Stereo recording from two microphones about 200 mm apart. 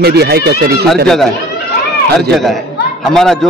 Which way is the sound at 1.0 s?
Centre (ahead or behind).